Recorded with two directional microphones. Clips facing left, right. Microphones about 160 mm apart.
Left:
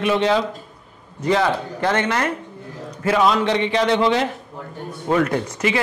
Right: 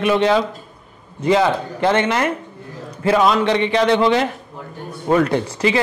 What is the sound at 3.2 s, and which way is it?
A man's voice, 60° right (ahead or behind).